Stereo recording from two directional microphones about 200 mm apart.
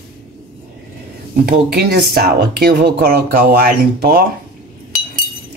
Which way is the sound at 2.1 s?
50° right (ahead or behind).